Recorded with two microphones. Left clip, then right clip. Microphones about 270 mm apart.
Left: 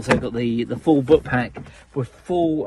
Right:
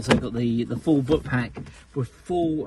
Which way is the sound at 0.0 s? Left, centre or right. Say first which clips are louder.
Left 3 dB; centre.